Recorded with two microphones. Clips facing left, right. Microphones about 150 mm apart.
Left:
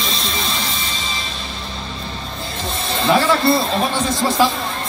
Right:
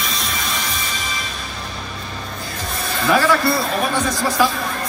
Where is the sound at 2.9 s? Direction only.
25° left (ahead or behind).